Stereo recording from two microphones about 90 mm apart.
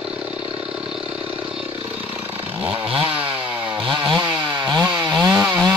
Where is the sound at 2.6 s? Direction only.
90° right.